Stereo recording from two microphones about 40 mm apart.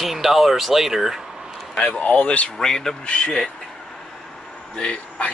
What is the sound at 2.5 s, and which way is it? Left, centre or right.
Speech, centre.